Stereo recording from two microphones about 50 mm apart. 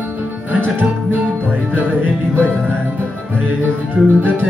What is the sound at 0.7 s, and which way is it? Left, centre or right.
Music, right.